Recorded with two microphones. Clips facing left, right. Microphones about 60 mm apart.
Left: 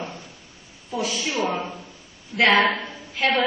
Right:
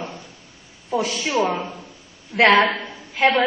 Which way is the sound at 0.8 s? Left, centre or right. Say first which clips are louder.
Right 4 dB; right.